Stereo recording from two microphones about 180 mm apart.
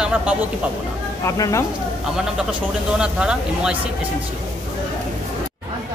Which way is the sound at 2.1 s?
5° right (ahead or behind).